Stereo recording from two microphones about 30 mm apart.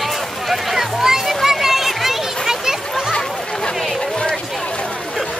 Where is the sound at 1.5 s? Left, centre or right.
Centre.